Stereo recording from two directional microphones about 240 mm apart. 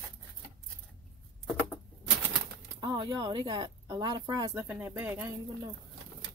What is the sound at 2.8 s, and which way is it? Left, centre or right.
Speech, centre.